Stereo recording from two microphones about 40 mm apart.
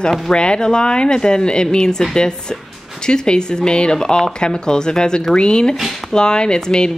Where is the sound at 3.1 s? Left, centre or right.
Left.